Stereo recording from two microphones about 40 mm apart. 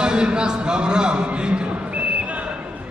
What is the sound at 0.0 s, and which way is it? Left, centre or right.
Speech, right.